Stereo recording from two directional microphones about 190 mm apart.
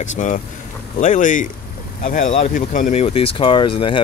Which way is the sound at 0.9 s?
40° left (ahead or behind).